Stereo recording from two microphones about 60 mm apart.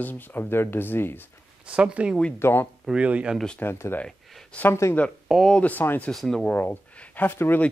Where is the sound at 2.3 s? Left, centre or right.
Left.